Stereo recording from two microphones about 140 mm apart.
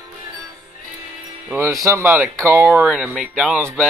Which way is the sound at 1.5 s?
20° right (ahead or behind).